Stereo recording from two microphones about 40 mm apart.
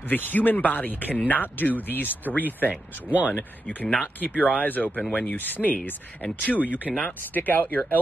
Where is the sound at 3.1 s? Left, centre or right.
Right.